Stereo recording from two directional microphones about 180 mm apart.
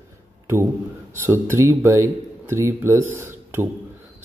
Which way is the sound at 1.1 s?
15° right (ahead or behind).